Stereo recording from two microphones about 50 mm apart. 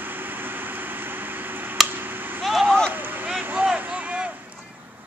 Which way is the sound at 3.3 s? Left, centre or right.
Centre.